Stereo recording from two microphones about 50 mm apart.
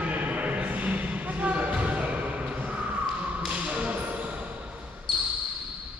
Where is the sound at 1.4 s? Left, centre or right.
Right.